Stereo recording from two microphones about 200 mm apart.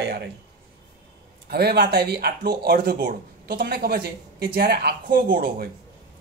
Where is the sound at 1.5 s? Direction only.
50° right (ahead or behind).